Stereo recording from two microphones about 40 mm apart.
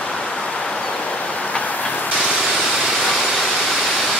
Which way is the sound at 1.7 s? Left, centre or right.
Left.